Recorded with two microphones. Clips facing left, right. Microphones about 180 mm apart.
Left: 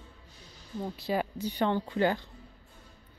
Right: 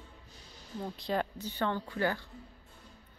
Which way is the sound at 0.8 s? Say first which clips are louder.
Left 2 dB; 5° left (ahead or behind).